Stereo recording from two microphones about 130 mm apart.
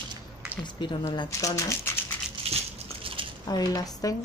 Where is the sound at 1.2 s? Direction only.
25° left (ahead or behind).